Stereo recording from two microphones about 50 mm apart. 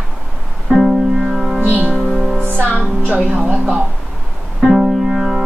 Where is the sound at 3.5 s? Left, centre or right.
Right.